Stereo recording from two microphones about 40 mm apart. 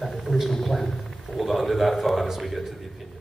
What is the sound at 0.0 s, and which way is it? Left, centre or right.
Speech, centre.